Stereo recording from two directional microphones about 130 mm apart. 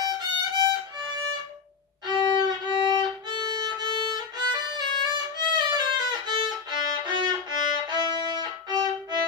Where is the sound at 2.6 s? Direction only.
35° right (ahead or behind).